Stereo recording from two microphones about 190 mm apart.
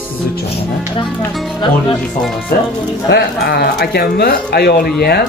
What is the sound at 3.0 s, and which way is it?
Speech, 60° left (ahead or behind).